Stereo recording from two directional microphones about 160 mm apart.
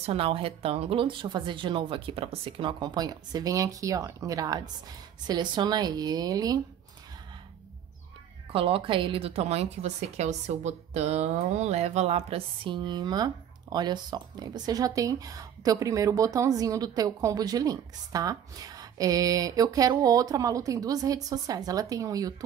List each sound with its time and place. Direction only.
0.0 s a woman's voice: 35° right (ahead or behind)
8.5 s a woman's voice: 35° right (ahead or behind)